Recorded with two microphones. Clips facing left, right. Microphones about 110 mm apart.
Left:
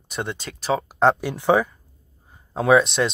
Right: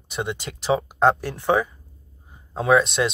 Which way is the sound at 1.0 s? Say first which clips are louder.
Left 1 dB; centre (ahead or behind).